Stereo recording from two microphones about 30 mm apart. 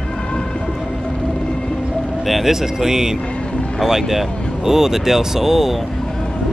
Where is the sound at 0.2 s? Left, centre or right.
Left.